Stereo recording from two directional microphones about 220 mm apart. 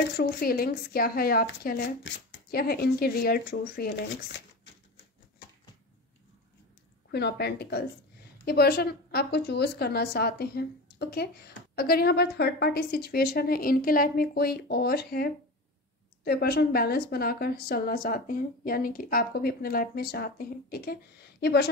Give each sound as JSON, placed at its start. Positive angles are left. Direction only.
{"t": 0.2, "sound": "a woman's voice", "side_deg": 45}
{"t": 7.1, "sound": "a woman's voice", "side_deg": 50}